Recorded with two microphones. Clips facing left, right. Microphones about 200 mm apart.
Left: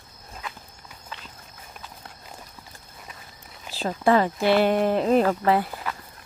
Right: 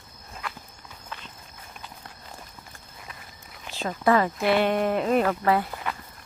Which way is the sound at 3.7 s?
30° left (ahead or behind).